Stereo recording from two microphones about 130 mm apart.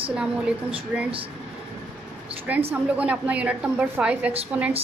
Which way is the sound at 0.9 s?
5° right (ahead or behind).